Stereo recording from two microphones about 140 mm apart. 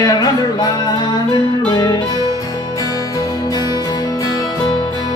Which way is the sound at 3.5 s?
30° left (ahead or behind).